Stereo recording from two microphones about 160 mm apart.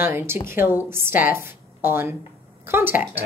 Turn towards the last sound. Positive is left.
turn(degrees=-10)  # may be behind; listen again after turning